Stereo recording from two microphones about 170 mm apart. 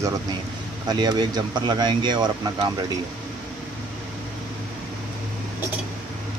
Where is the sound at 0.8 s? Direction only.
25° right (ahead or behind).